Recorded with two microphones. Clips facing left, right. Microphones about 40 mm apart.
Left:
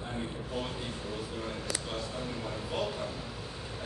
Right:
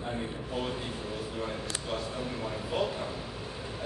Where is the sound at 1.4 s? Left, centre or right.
Centre.